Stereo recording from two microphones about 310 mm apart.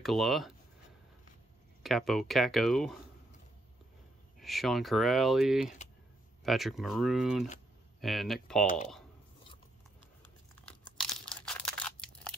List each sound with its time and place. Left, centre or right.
0.0 s speech: centre
1.8 s speech: centre
4.4 s speech: centre
8.6 s speech: left
11.0 s crumpling: centre